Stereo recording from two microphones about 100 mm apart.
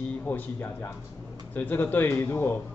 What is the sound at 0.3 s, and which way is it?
A man's voice, 20° left (ahead or behind).